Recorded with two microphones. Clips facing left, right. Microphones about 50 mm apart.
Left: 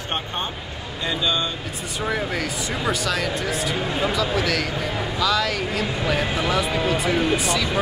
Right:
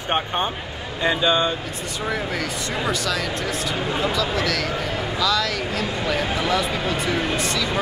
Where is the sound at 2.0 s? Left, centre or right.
Centre.